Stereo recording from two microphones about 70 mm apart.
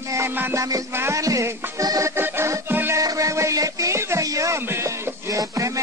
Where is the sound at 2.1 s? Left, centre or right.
Right.